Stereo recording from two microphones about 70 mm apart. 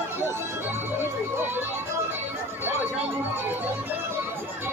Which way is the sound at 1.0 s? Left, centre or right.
Right.